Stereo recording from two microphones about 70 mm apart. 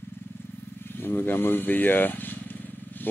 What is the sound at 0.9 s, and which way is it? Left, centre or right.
Speech, left.